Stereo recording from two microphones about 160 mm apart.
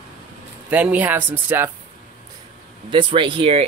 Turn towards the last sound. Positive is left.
turn(degrees=-35)  # may be behind; listen again after turning